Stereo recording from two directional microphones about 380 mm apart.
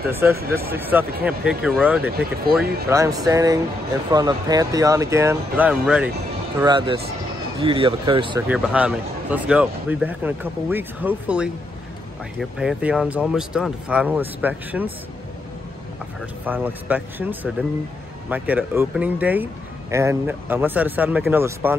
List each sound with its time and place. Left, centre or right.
0.1 s speech: centre
0.4 s speech: right
0.7 s speech: centre
16.4 s speech: centre